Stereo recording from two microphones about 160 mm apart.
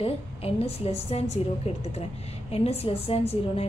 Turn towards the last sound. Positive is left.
turn(degrees=40)  # may be behind; listen again after turning